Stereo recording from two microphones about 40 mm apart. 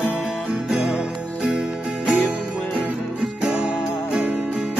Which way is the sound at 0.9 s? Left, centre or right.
Right.